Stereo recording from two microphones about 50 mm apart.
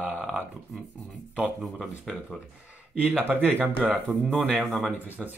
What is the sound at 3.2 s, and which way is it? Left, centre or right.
Speech, right.